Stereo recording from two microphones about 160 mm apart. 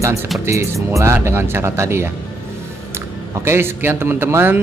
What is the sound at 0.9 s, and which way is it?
Speech, 15° right (ahead or behind).